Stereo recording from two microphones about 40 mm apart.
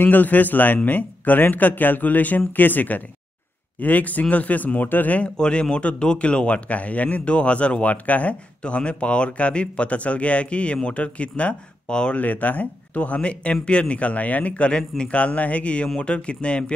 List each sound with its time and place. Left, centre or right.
0.0 s speech: left
5.4 s a man's voice: left
12.2 s speech: left
14.7 s a man's voice: left
15.1 s a man's voice: left